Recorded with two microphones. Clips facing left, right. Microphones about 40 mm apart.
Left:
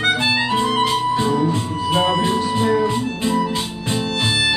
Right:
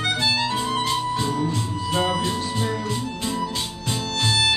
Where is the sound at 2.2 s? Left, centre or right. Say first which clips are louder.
Left 6 dB; left.